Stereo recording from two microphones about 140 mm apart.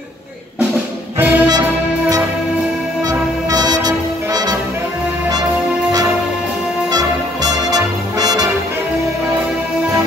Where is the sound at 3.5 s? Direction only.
25° right (ahead or behind).